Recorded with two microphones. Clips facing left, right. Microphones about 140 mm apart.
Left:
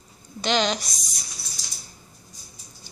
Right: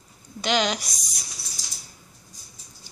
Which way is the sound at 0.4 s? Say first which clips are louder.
Left 1 dB; 5° right (ahead or behind).